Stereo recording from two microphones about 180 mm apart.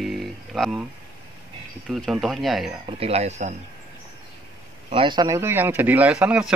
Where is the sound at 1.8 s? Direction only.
Centre (ahead or behind).